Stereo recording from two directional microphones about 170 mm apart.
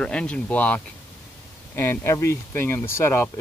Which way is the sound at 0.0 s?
5° left (ahead or behind).